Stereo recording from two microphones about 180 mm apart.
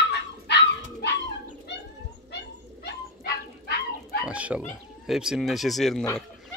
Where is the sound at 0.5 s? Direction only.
70° left (ahead or behind).